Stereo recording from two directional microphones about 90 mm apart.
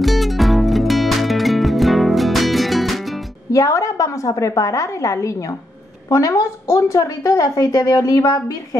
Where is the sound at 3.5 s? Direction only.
35° left (ahead or behind).